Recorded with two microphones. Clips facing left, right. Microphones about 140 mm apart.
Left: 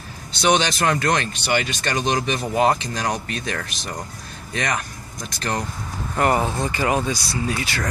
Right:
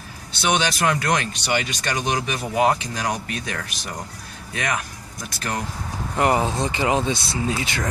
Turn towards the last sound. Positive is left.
turn(degrees=-20)  # may be behind; listen again after turning